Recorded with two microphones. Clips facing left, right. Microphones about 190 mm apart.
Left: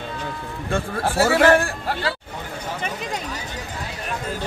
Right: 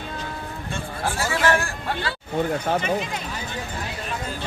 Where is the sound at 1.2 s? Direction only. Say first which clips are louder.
Left 8 dB; 60° left (ahead or behind).